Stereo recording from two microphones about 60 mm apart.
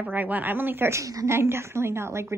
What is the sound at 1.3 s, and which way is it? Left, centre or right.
Speech, right.